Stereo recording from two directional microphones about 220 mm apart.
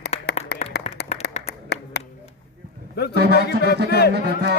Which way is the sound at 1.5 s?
50° left (ahead or behind).